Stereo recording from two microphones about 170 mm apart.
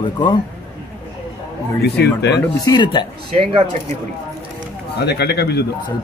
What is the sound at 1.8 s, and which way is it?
Speech, 75° left (ahead or behind).